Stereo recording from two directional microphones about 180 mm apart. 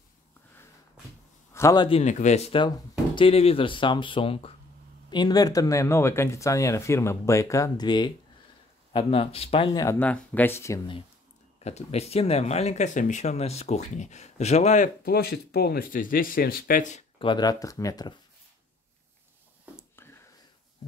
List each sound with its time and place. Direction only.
1.5 s a man's voice: 15° left (ahead or behind)
1.9 s speech: 40° left (ahead or behind)
9.8 s speech: 10° left (ahead or behind)
11.6 s speech: 35° left (ahead or behind)
15.0 s speech: 60° left (ahead or behind)
17.2 s speech: 25° left (ahead or behind)
20.0 s a sound: 15° left (ahead or behind)